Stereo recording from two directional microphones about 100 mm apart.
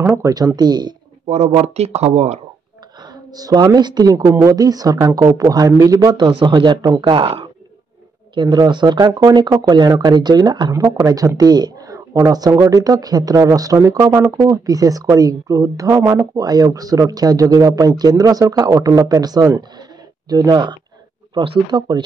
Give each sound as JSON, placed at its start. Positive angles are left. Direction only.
{"t": 0.1, "sound": "a woman's voice", "side_deg": -35}
{"t": 1.3, "sound": "speech", "side_deg": -90}
{"t": 3.3, "sound": "a woman's voice", "side_deg": -40}
{"t": 7.0, "sound": "speech", "side_deg": -55}
{"t": 10.7, "sound": "a woman's voice", "side_deg": -30}